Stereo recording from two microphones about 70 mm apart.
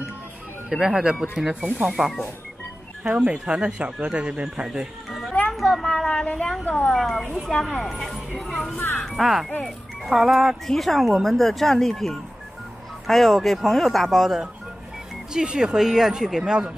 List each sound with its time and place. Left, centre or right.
0.7 s speech: centre
3.0 s speech: centre
4.6 s speech: centre
5.5 s a sound: centre
6.6 s speech: centre
8.7 s speech: left
9.0 s speech: centre